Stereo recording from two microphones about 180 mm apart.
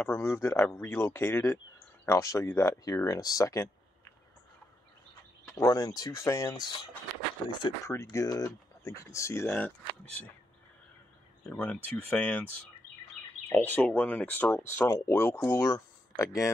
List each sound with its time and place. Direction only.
0.0 s speech: 15° left (ahead or behind)
5.5 s speech: 20° left (ahead or behind)
7.9 s speech: 15° left (ahead or behind)
11.4 s speech: 5° left (ahead or behind)
13.2 s bird: 5° left (ahead or behind)
13.5 s speech: 10° left (ahead or behind)